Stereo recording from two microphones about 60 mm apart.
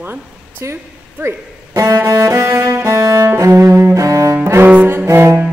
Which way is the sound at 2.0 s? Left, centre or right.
Right.